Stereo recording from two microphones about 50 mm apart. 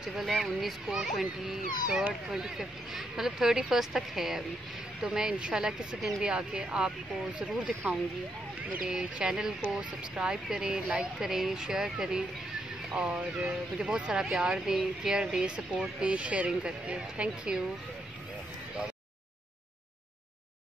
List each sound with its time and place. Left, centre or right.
0.0 s speech: centre
2.3 s speech: centre; by 8.0 s right
8.8 s speech: centre